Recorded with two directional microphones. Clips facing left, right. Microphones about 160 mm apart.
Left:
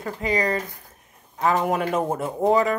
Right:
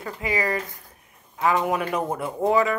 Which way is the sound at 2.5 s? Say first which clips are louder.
Left 1 dB; 35° left (ahead or behind).